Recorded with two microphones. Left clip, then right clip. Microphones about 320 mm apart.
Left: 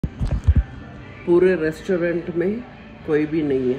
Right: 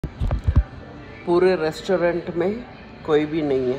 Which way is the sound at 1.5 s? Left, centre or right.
Right.